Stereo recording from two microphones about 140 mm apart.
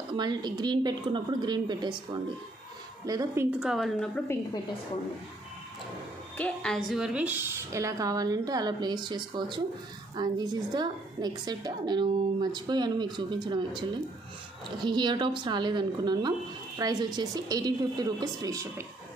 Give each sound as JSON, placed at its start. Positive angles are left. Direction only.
{"t": 0.1, "sound": "a woman's voice", "side_deg": -30}
{"t": 3.1, "sound": "a woman's voice", "side_deg": -25}
{"t": 3.5, "sound": "a woman's voice", "side_deg": -5}
{"t": 6.3, "sound": "a woman's voice", "side_deg": 5}